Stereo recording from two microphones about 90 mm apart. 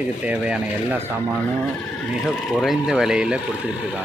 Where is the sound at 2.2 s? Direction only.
5° right (ahead or behind).